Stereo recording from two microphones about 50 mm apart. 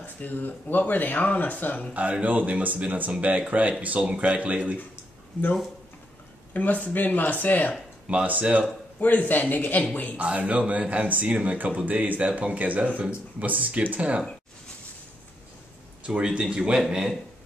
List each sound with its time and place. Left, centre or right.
0.0 s speech: left
2.0 s speech: right
6.5 s speech: left
8.1 s speech: right
9.0 s speech: left
10.1 s speech: right
16.1 s speech: centre